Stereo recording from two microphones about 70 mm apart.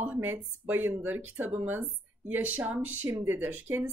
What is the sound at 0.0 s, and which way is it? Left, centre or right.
A woman's voice, right.